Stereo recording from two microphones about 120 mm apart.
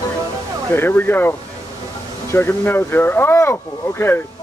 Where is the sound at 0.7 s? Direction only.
15° left (ahead or behind).